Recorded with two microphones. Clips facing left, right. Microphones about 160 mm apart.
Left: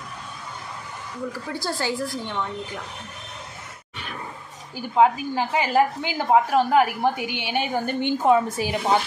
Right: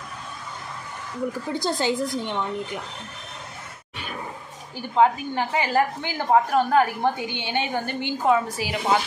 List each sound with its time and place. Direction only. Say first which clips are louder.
1.5 s a woman's voice: right 3 dB; 20° right (ahead or behind)
4.9 s a woman's voice: left 1 dB; 10° left (ahead or behind)